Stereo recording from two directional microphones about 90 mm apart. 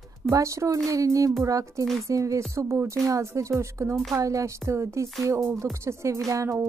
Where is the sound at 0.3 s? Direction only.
35° right (ahead or behind).